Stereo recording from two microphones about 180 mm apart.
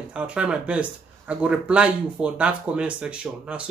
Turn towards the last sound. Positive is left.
turn(degrees=-5)  # may be behind; listen again after turning